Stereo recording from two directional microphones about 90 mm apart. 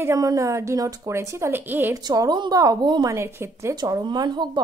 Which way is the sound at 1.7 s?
20° right (ahead or behind).